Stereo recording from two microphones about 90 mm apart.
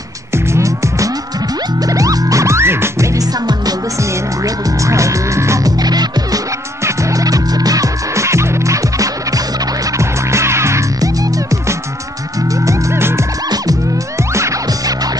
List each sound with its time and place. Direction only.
0.3 s music: 35° right (ahead or behind)
3.2 s music: 45° right (ahead or behind)
4.6 s music: 35° right (ahead or behind)
6.8 s music: 35° right (ahead or behind)
12.5 s music: 30° right (ahead or behind)
14.3 s music: 35° right (ahead or behind)